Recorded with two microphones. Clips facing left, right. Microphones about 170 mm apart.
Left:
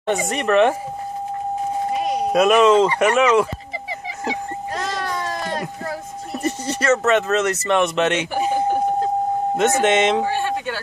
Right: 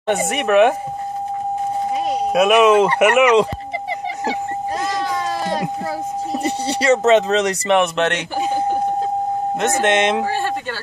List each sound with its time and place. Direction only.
0.1 s speech: 5° right (ahead or behind)
2.3 s speech: 5° right (ahead or behind)
6.7 s speech: 15° right (ahead or behind)
7.8 s speech: centre (ahead or behind)
9.6 s speech: 5° left (ahead or behind)